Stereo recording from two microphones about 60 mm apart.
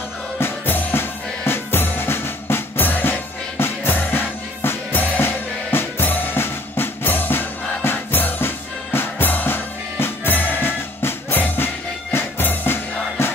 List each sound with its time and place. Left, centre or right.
0.4 s music: left